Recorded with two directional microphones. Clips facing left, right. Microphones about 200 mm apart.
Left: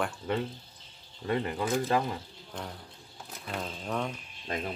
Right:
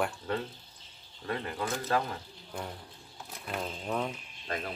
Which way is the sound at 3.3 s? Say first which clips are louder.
Even; centre (ahead or behind).